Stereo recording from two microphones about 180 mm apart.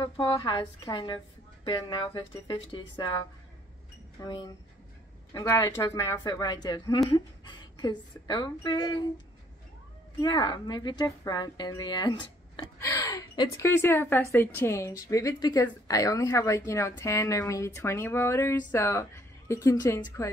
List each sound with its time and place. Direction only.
0.0 s a woman's voice: 30° left (ahead or behind)
4.2 s a woman's voice: 25° left (ahead or behind)
10.2 s a woman's voice: 25° left (ahead or behind)
12.7 s a woman's voice: 15° left (ahead or behind)